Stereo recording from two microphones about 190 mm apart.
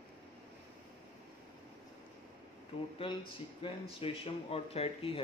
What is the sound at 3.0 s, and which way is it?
Speech, 30° left (ahead or behind).